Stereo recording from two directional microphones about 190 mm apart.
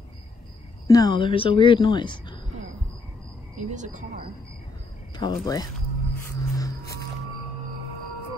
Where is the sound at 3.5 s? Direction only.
40° right (ahead or behind).